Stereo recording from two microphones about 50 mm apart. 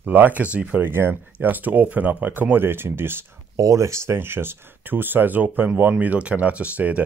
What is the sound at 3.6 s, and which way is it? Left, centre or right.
Speech, right.